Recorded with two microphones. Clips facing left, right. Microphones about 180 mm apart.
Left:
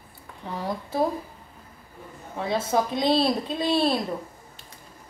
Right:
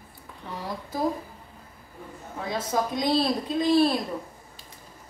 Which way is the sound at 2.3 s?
25° left (ahead or behind).